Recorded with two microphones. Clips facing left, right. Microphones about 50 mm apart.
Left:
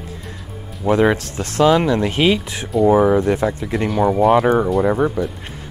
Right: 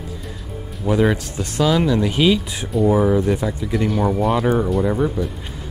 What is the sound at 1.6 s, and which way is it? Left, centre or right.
Speech, left.